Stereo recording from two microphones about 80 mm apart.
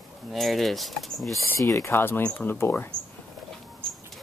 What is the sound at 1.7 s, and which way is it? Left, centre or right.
Speech, left.